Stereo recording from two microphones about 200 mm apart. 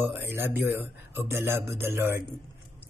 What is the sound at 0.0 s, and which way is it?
Speech, 10° right (ahead or behind).